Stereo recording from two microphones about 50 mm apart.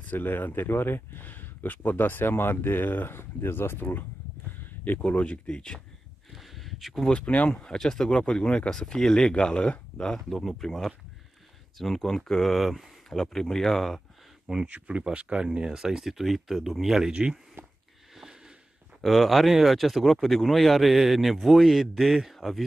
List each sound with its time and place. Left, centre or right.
0.0 s speech: left
5.0 s speech: left
6.3 s a sound: centre
7.0 s speech: left
10.3 s speech: centre
13.1 s speech: centre
14.7 s speech: right; by 17.1 s centre
18.9 s speech: centre